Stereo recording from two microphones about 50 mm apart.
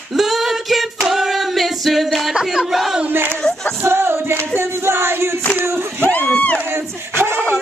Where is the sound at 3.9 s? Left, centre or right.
Right.